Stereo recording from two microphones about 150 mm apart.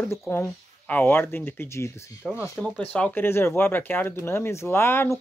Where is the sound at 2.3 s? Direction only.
Centre (ahead or behind).